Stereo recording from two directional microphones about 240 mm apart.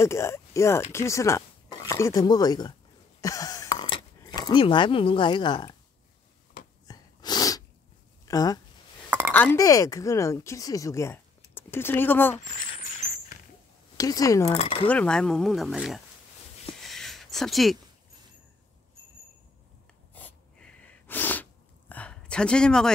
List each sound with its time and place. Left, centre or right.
0.0 s speech: centre
3.2 s a sound: centre
6.9 s sneeze: centre
8.3 s speech: centre
13.9 s speech: centre
14.6 s speech: left
14.9 s speech: centre
16.9 s a sound: centre
20.2 s sneeze: centre